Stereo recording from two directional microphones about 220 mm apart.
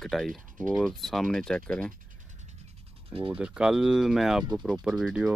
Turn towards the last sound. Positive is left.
turn(degrees=0)  # may be behind; listen again after turning